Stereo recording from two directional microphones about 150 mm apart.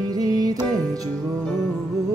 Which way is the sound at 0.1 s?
25° right (ahead or behind).